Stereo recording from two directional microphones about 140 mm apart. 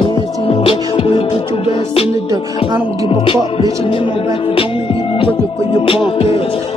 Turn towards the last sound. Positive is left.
turn(degrees=40)  # may be behind; listen again after turning